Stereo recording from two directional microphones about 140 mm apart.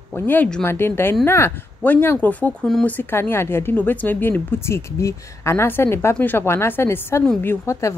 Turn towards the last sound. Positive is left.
turn(degrees=20)  # may be behind; listen again after turning